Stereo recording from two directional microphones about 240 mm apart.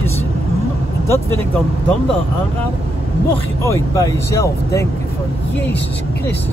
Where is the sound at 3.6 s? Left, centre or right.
Centre.